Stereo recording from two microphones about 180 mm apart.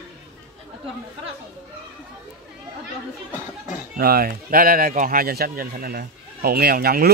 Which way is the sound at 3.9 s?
55° right (ahead or behind).